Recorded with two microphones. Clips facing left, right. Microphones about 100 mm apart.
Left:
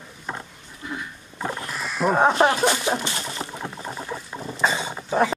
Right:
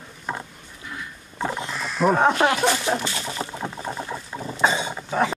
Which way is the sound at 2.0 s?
5° left (ahead or behind).